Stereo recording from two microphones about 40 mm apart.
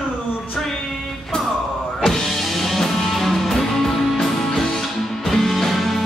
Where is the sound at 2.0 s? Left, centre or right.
Centre.